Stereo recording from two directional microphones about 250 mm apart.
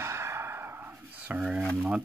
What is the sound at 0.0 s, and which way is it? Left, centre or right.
Speech, centre.